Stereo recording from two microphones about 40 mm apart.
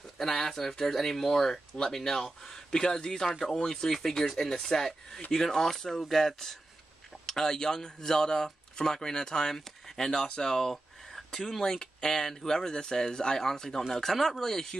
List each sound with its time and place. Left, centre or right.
0.2 s speech: centre
10.2 s speech: left
10.5 s a sound: centre
11.6 s speech: centre